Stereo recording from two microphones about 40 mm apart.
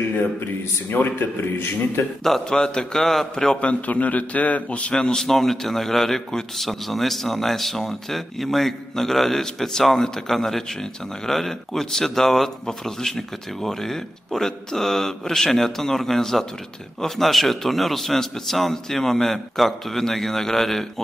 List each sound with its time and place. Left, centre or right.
0.8 s a man's voice: left
2.2 s a man's voice: centre
3.6 s a man's voice: left
4.9 s a man's voice: centre